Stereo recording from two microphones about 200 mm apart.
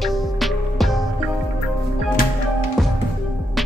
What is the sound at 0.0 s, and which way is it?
Music, centre (ahead or behind).